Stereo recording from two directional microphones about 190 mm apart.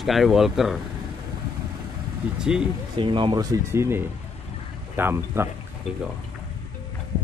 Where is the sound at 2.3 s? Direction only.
5° right (ahead or behind).